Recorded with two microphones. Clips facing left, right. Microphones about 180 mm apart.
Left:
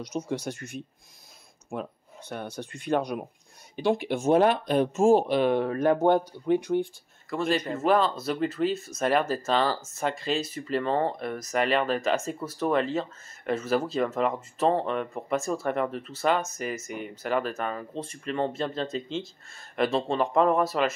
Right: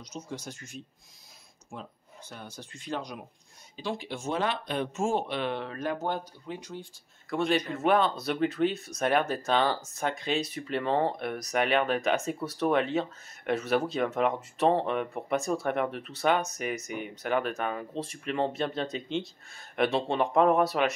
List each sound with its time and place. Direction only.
0.0 s speech: 65° left (ahead or behind)
7.2 s speech: centre (ahead or behind)